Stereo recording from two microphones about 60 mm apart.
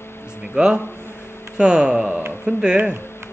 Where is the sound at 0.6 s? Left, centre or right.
Centre.